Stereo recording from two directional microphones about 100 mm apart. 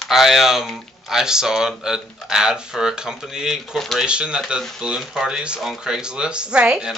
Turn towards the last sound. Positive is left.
turn(degrees=-5)  # may be behind; listen again after turning